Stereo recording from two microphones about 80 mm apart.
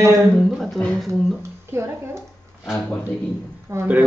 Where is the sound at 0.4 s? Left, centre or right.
Centre.